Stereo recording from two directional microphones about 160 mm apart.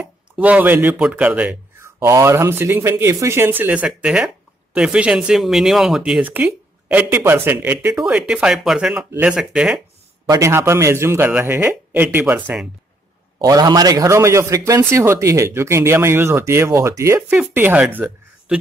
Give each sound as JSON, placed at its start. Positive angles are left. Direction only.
{"t": 0.0, "sound": "a man's voice", "side_deg": -10}
{"t": 10.3, "sound": "a man's voice", "side_deg": -20}
{"t": 13.4, "sound": "a man's voice", "side_deg": -25}